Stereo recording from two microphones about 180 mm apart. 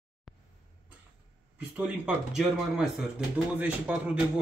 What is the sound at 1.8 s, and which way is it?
Speech, 5° right (ahead or behind).